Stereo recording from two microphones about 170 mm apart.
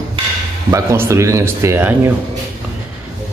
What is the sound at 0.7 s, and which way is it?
Speech, 15° right (ahead or behind).